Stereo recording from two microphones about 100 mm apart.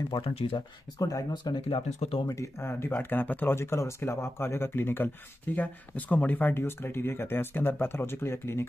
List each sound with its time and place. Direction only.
0.1 s speech: 70° left (ahead or behind)
0.6 s speech: 35° left (ahead or behind)
1.3 s speech: 55° left (ahead or behind)
2.0 s speech: 70° left (ahead or behind)
2.2 s speech: 30° left (ahead or behind)